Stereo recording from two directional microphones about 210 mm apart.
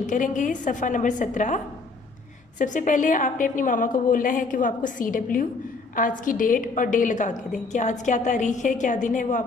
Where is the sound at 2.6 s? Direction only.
35° left (ahead or behind).